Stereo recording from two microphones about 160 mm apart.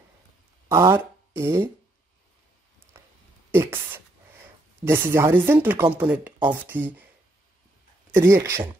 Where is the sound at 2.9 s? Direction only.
15° right (ahead or behind).